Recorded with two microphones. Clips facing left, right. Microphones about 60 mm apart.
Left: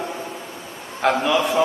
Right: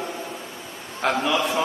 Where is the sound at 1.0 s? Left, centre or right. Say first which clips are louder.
Left 3 dB; centre.